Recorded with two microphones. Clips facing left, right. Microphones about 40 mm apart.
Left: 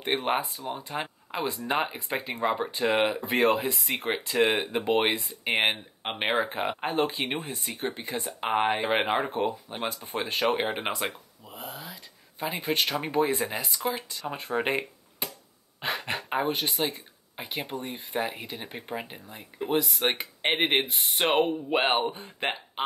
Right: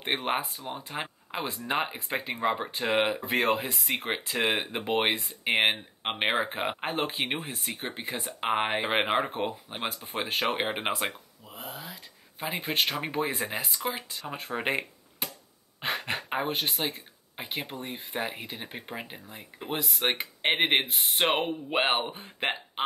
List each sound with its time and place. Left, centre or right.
0.2 s speech: centre
11.4 s a sound: centre
12.8 s speech: centre